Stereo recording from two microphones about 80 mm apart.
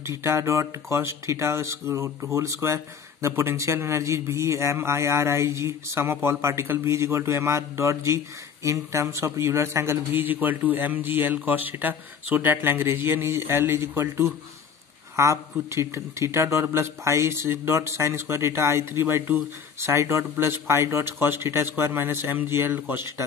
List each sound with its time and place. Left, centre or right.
0.0 s a man's voice: right